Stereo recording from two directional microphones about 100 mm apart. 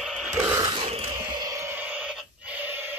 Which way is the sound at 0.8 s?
90° right.